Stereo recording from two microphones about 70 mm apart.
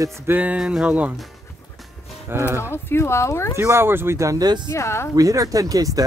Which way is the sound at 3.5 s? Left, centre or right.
Right.